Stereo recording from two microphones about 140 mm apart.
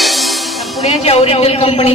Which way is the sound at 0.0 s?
Centre (ahead or behind).